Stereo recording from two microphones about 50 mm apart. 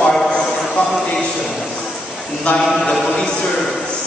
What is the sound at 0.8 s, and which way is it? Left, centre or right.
Speech, left.